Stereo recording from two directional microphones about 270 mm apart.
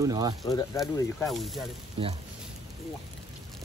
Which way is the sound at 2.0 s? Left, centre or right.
Centre.